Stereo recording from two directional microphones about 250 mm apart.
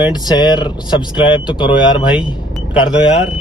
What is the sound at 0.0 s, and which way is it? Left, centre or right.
Speech, centre.